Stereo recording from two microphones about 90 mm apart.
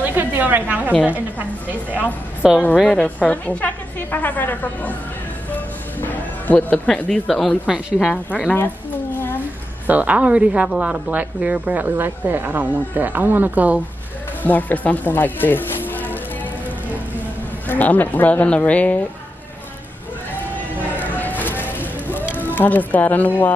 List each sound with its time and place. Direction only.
0.0 s a sound: 20° right (ahead or behind)
1.7 s speech: 20° right (ahead or behind)
2.4 s speech: 5° right (ahead or behind)
2.8 s a woman's voice: 10° left (ahead or behind)
5.5 s music: 20° left (ahead or behind)
7.1 s speech: 5° left (ahead or behind)
9.8 s a woman's voice: 15° right (ahead or behind)
14.4 s speech: 20° left (ahead or behind)
17.6 s speech: 20° left (ahead or behind)
21.0 s a sound: 20° left (ahead or behind)
22.4 s speech: 20° left (ahead or behind)